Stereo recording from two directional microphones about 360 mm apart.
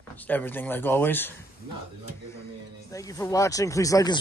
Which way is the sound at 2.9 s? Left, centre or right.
Centre.